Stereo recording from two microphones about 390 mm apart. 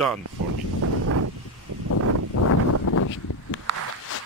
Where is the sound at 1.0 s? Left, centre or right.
Right.